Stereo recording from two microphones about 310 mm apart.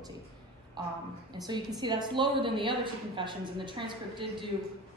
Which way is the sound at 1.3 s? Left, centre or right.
Centre.